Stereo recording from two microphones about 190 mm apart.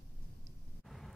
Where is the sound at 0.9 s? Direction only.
Centre (ahead or behind).